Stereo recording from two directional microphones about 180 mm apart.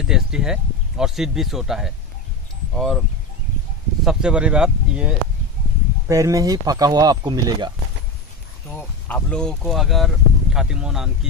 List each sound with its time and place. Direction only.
0.0 s speech: 5° right (ahead or behind)
4.0 s speech: 5° right (ahead or behind)
6.0 s speech: 15° right (ahead or behind)
8.7 s speech: 10° left (ahead or behind)